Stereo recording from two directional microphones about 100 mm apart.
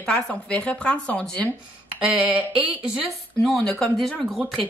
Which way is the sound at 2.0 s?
15° right (ahead or behind).